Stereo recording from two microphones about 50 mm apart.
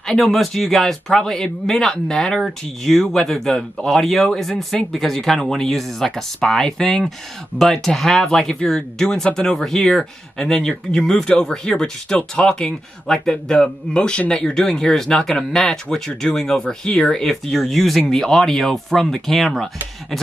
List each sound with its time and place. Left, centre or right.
0.0 s speech: centre
17.2 s speech: centre